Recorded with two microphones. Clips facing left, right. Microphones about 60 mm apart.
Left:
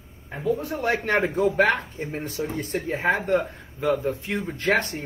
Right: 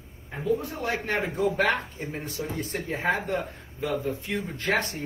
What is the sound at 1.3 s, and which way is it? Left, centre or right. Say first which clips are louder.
Speech: left 2 dB; left.